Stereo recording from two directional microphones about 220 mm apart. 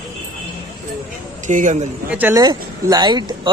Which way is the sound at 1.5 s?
35° right (ahead or behind).